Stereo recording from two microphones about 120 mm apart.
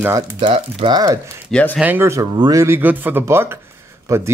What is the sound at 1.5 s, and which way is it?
Speech, 10° left (ahead or behind).